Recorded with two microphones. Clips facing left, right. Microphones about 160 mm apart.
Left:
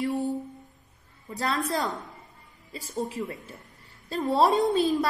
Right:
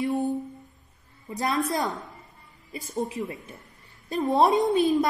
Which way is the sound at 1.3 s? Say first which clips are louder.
Right 2 dB; 20° right (ahead or behind).